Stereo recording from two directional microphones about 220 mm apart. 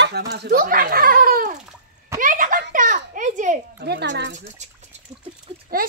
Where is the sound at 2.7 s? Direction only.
35° right (ahead or behind).